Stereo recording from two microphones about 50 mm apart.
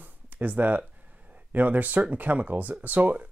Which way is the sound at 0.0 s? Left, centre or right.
Right.